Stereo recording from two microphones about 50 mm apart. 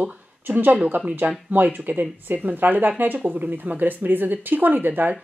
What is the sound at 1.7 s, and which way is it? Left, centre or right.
Speech, right.